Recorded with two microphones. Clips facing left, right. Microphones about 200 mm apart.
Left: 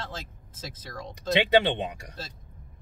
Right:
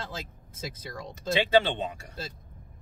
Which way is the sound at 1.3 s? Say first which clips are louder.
Left 1 dB; 20° left (ahead or behind).